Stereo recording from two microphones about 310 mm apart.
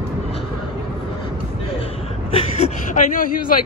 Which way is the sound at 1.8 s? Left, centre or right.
Centre.